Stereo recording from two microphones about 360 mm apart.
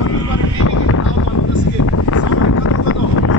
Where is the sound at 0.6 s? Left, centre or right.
Left.